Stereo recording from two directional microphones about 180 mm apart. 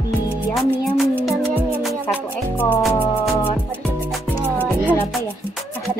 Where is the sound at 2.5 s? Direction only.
10° left (ahead or behind).